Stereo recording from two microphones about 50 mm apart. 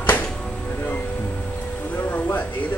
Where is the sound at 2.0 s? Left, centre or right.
Left.